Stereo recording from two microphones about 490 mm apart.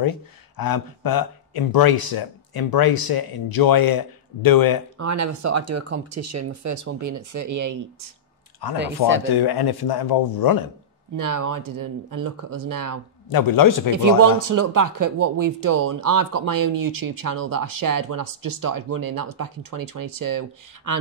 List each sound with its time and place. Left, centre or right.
0.6 s speech: left
4.9 s speech: right
8.7 s speech: right
9.2 s speech: left
11.1 s speech: right
13.3 s a man's voice: left
13.9 s speech: right